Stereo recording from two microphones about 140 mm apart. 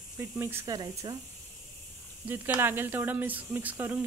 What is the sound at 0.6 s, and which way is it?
Speech, 30° right (ahead or behind).